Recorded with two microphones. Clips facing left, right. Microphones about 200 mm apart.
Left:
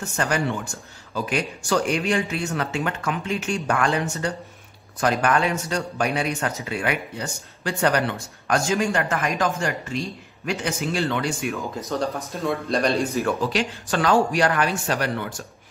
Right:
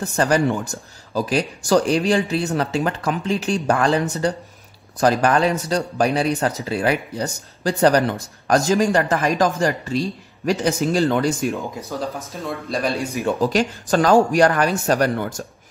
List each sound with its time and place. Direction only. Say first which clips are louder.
0.0 s speech: right 6 dB; 35° right (ahead or behind)
11.9 s speech: left 4 dB; centre (ahead or behind)
13.4 s speech: right 5 dB; 45° right (ahead or behind)